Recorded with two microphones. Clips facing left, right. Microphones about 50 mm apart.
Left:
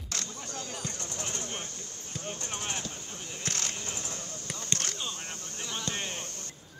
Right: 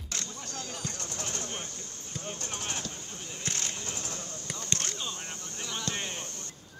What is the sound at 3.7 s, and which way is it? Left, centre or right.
Basketball bounce, left.